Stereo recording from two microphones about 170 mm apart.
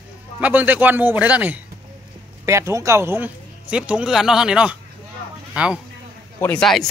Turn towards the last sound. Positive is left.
turn(degrees=0)  # may be behind; listen again after turning